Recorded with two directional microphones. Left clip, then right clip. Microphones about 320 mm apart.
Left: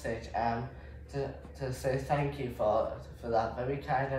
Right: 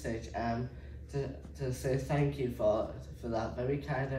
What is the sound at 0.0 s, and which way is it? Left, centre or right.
Speech, centre.